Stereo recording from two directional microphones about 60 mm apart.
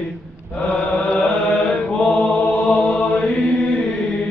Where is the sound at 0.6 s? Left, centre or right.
Centre.